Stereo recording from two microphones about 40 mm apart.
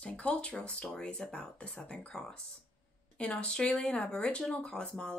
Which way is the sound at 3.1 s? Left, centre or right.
Left.